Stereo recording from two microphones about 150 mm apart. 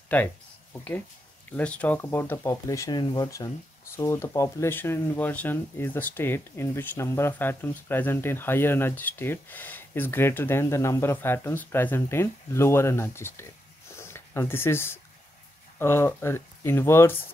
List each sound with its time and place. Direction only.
0.1 s speech: 10° left (ahead or behind)